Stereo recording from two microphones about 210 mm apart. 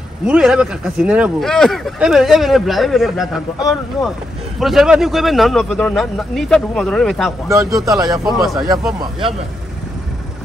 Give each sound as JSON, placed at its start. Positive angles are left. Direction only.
{"t": 0.3, "sound": "speech", "side_deg": -5}
{"t": 4.6, "sound": "speech", "side_deg": 0}
{"t": 7.4, "sound": "speech", "side_deg": -15}
{"t": 8.4, "sound": "speech", "side_deg": 0}